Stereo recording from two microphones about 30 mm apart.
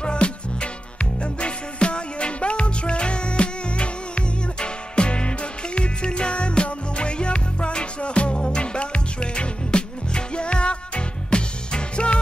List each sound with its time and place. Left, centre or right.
0.0 s music: left